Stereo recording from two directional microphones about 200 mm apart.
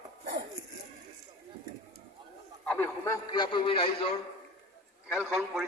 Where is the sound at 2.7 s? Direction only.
10° left (ahead or behind); by 4.1 s 25° left (ahead or behind).